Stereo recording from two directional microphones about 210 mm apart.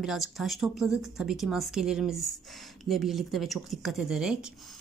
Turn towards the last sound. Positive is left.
turn(degrees=-5)  # may be behind; listen again after turning